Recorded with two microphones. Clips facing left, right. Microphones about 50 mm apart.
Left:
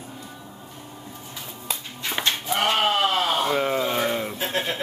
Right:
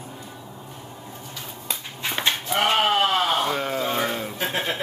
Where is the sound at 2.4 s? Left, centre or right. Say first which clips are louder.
Right 1 dB; centre.